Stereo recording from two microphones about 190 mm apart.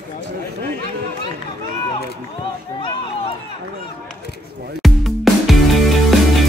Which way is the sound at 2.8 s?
25° left (ahead or behind).